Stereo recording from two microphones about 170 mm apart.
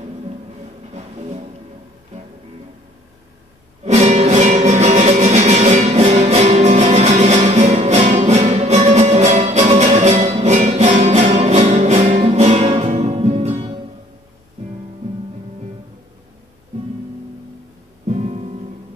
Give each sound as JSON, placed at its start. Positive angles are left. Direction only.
{"t": 0.9, "sound": "music", "side_deg": -40}
{"t": 3.8, "sound": "music", "side_deg": -40}
{"t": 18.0, "sound": "music", "side_deg": -40}